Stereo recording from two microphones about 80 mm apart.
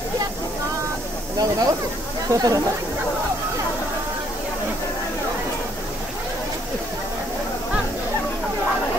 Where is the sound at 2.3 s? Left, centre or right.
Right.